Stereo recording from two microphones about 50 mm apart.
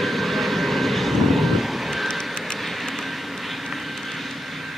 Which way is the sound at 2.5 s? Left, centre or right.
Centre.